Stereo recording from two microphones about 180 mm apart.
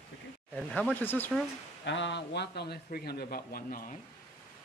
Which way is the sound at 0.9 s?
10° left (ahead or behind).